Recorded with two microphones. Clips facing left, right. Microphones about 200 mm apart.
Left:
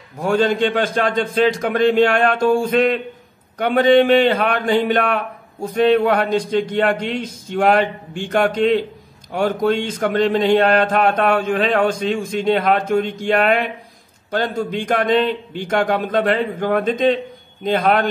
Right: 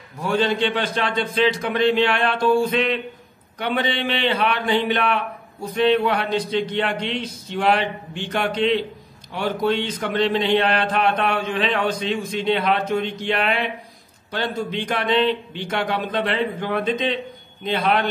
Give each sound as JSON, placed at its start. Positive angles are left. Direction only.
{"t": 0.2, "sound": "a man's voice", "side_deg": 50}
{"t": 14.9, "sound": "a man's voice", "side_deg": 50}